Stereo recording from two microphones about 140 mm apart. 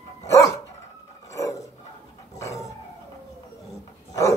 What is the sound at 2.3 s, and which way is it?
Dog, 25° left (ahead or behind).